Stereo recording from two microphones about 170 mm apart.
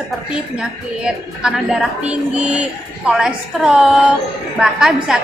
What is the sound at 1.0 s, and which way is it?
A woman's voice, 5° right (ahead or behind).